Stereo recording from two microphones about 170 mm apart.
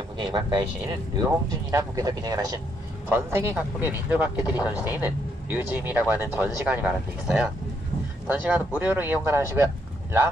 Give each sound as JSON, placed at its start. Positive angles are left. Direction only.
{"t": 0.2, "sound": "speech", "side_deg": -25}